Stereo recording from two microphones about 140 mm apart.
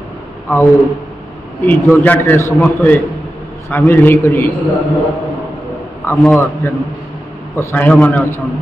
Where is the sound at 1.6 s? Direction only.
10° left (ahead or behind).